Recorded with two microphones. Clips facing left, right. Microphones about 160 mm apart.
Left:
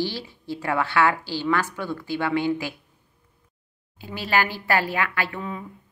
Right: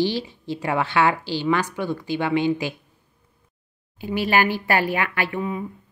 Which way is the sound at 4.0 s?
15° right (ahead or behind).